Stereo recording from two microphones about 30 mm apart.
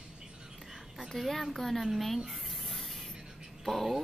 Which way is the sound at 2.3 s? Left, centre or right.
Centre.